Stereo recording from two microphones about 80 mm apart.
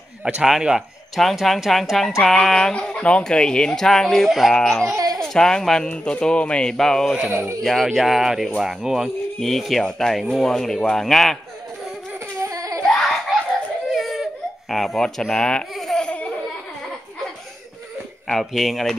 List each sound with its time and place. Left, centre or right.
0.2 s speech: centre
4.9 s baby cry: right
5.2 s speech: centre
7.2 s speech: centre
7.6 s speech: centre
12.4 s a sound: right
12.8 s a sound: centre
13.9 s baby cry: centre
15.7 s laughter: centre
18.2 s speech: centre